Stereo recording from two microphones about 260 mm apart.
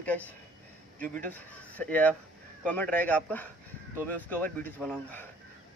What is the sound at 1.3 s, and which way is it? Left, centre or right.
Speech, centre.